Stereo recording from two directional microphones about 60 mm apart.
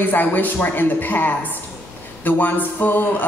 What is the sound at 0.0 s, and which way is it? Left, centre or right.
A man's voice, left.